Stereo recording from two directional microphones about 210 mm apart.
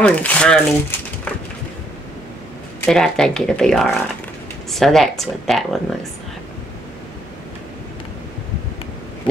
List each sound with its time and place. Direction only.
0.0 s speech: 5° left (ahead or behind)
2.8 s speech: 5° left (ahead or behind)